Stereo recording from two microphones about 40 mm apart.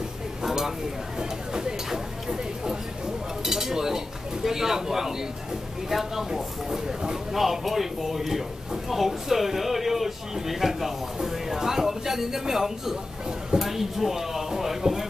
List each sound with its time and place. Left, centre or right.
0.4 s a sound: centre
3.4 s cutlery: centre
4.5 s speech: centre